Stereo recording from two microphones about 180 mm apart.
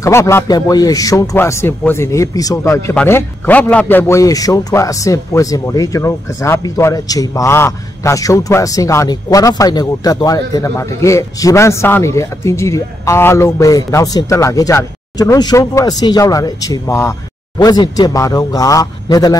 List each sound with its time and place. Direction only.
0.0 s speech: 15° left (ahead or behind)